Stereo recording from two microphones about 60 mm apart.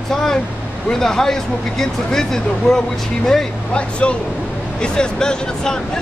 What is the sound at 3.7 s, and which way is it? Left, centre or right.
Speech, centre.